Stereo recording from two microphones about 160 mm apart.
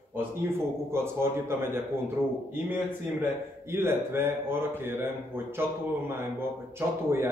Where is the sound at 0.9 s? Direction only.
15° right (ahead or behind).